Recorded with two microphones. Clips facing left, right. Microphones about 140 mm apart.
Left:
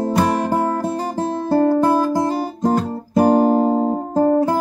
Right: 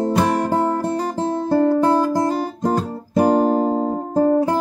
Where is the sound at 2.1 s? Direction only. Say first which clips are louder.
Even; 10° left (ahead or behind).